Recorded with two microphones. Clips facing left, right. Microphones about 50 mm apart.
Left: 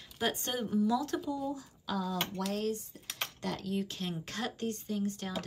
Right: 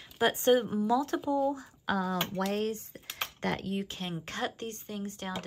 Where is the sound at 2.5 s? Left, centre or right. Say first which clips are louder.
Right 2 dB; right.